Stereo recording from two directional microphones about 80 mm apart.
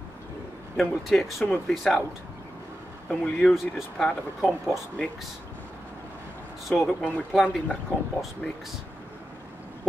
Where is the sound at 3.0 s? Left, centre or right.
Centre.